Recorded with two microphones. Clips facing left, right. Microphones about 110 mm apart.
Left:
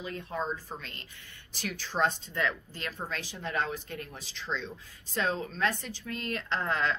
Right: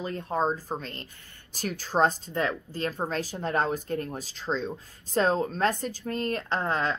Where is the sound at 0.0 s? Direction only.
40° right (ahead or behind).